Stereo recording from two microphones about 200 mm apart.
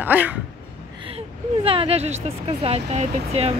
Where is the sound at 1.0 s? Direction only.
30° right (ahead or behind).